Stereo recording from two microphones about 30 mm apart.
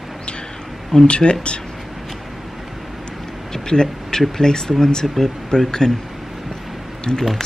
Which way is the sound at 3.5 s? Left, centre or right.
Left.